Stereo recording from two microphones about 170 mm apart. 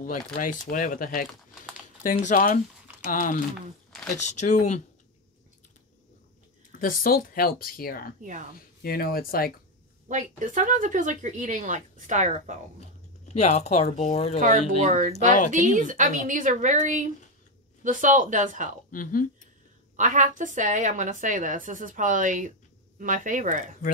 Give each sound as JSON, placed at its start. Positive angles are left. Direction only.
{"t": 0.0, "sound": "speech", "side_deg": 50}
{"t": 6.8, "sound": "speech", "side_deg": 55}
{"t": 8.2, "sound": "speech", "side_deg": -45}
{"t": 8.8, "sound": "speech", "side_deg": 60}
{"t": 10.0, "sound": "speech", "side_deg": -50}
{"t": 13.2, "sound": "speech", "side_deg": 40}
{"t": 14.8, "sound": "speech", "side_deg": -45}
{"t": 18.9, "sound": "speech", "side_deg": 55}
{"t": 20.0, "sound": "speech", "side_deg": -50}